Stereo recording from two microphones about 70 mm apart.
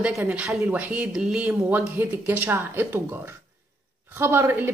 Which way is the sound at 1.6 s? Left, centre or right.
Right.